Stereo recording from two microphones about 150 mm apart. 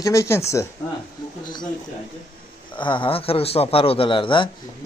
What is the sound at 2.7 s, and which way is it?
A man's voice, 35° left (ahead or behind).